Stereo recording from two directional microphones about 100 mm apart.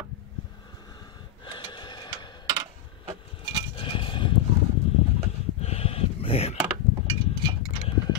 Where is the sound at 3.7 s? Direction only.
60° left (ahead or behind).